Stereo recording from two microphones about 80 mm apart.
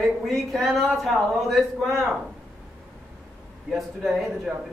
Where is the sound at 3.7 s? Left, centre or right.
Centre.